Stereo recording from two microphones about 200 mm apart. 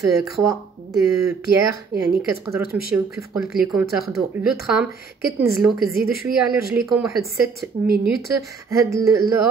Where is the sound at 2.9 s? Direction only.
15° right (ahead or behind).